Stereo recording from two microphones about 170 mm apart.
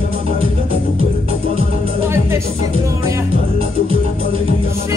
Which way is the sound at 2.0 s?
15° right (ahead or behind).